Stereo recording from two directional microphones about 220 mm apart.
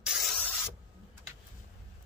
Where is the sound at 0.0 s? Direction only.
Centre (ahead or behind).